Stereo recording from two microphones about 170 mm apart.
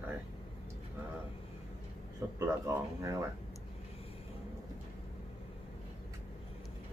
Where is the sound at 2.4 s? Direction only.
15° right (ahead or behind).